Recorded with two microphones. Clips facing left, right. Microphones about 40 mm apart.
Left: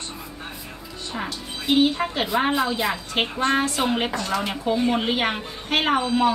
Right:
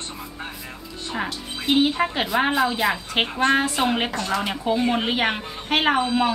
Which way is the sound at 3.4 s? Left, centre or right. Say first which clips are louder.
Right 2 dB; centre.